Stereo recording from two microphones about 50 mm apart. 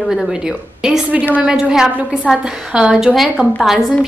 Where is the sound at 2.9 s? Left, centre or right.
Centre.